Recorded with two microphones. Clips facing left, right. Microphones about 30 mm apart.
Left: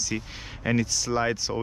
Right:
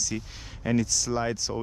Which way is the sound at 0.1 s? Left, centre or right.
Left.